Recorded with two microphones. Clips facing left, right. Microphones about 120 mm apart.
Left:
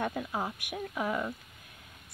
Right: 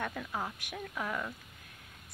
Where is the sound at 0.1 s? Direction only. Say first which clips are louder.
Left 4 dB; 20° left (ahead or behind).